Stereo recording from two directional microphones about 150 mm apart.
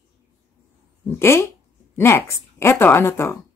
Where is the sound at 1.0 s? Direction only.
15° left (ahead or behind).